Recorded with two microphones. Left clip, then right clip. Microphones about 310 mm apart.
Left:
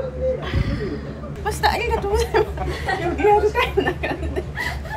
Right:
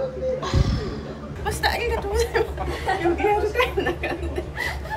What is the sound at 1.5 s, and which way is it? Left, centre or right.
Speech, centre.